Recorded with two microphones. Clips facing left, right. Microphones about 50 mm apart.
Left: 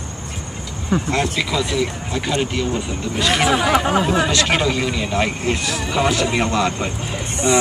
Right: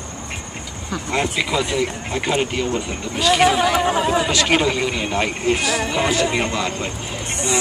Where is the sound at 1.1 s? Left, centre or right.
Centre.